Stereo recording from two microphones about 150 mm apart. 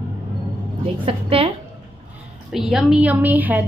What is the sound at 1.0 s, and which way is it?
Speech, 35° right (ahead or behind).